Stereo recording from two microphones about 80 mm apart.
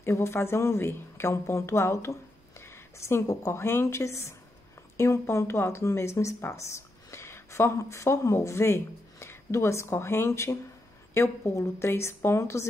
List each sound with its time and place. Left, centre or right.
0.0 s a woman's voice: left